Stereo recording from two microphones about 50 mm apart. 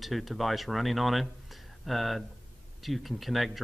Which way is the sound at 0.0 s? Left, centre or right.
Centre.